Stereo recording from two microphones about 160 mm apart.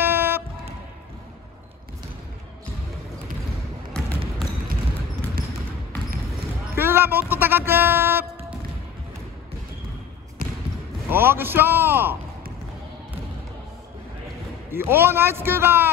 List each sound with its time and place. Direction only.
0.0 s music: 15° right (ahead or behind)
6.7 s speech: 15° right (ahead or behind)
10.4 s trickle: 60° right (ahead or behind)
11.1 s a man's voice: 15° right (ahead or behind)
14.7 s a man's voice: 15° right (ahead or behind)